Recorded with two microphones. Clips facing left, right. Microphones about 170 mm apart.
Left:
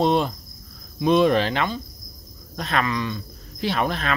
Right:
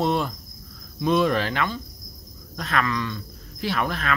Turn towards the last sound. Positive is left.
turn(degrees=25)  # may be behind; listen again after turning